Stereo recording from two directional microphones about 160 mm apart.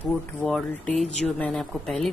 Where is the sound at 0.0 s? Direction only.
10° left (ahead or behind).